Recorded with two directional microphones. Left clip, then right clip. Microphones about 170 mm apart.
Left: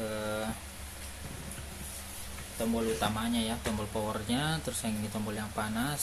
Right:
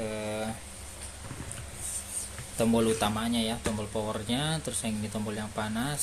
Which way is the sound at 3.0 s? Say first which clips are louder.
Right 3 dB; 30° right (ahead or behind).